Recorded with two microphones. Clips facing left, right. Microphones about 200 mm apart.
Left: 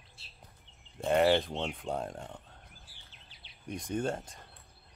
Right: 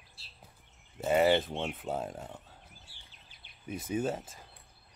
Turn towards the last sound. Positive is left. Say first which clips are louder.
# right 1 dB
turn(degrees=-5)  # may be behind; listen again after turning